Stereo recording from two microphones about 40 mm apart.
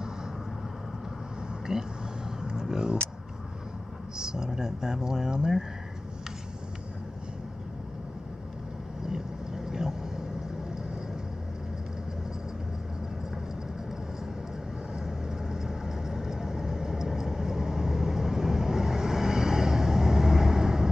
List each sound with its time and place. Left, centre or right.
1.7 s speech: right
2.6 s a sound: centre
4.2 s speech: centre
9.7 s vehicle: centre
15.0 s vehicle: centre